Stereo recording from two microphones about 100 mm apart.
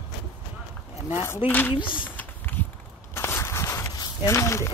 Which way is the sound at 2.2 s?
20° left (ahead or behind).